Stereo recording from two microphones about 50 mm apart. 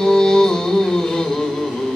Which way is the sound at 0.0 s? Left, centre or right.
Centre.